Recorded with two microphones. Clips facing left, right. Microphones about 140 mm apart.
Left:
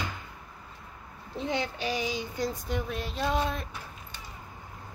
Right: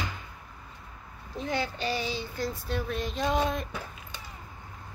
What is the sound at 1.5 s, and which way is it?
Speech, 15° left (ahead or behind).